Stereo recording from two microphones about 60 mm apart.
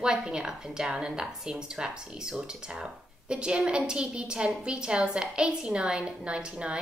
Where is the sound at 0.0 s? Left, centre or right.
Centre.